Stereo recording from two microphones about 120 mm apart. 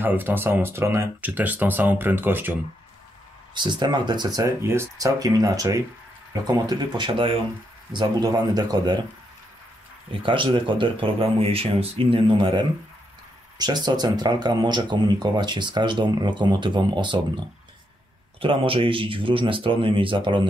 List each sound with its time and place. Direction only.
0.0 s speech: 15° right (ahead or behind)
3.5 s speech: 40° right (ahead or behind)
10.2 s speech: 45° right (ahead or behind)